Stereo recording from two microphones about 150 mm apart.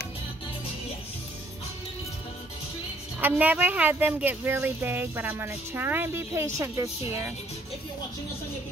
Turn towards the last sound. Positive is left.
turn(degrees=-15)  # may be behind; listen again after turning